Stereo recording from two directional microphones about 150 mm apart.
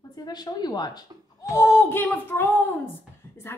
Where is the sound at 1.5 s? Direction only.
15° left (ahead or behind).